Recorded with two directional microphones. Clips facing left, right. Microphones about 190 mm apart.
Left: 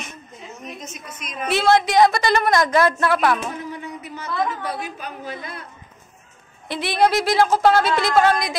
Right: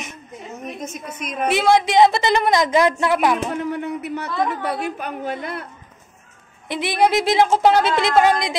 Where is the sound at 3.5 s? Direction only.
65° right (ahead or behind).